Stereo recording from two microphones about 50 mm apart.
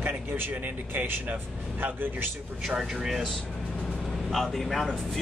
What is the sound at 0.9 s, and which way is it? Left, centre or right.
A man's voice, right.